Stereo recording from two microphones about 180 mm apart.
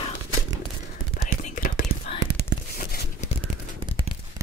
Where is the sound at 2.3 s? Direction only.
65° right (ahead or behind).